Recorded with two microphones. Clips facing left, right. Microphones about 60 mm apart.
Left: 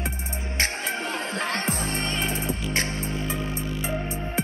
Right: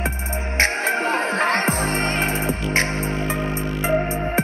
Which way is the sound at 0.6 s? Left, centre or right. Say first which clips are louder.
Right 8 dB; right.